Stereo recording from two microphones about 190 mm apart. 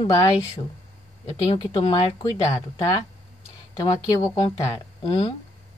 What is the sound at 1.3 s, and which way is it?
Speech, 25° left (ahead or behind).